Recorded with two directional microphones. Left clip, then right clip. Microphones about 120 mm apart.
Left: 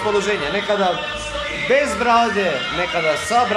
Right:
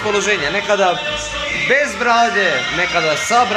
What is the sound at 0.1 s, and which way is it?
Speech, 5° left (ahead or behind).